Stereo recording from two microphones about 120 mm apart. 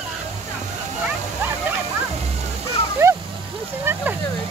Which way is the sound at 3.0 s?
25° right (ahead or behind).